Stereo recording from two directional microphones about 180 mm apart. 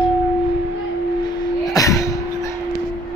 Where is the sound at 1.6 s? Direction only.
20° left (ahead or behind).